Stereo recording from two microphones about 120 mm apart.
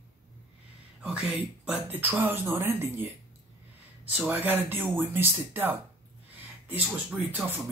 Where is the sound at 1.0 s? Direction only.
10° right (ahead or behind).